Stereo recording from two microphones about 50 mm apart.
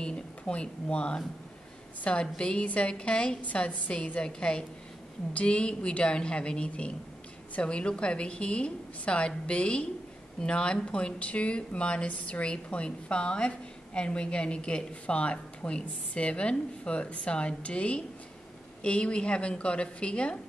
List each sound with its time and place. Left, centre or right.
0.0 s speech: left